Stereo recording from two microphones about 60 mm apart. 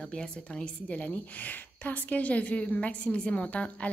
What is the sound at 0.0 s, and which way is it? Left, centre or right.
A woman's voice, centre.